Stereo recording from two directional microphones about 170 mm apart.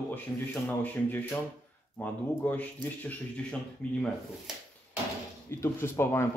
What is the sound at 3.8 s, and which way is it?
Speech, 5° left (ahead or behind).